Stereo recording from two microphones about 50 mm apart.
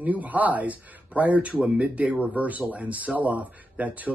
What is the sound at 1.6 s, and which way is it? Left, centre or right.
Speech, right.